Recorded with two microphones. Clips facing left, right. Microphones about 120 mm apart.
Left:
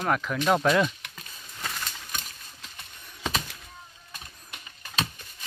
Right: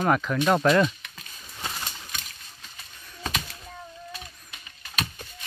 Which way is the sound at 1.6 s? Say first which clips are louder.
Right 1 dB; 20° right (ahead or behind).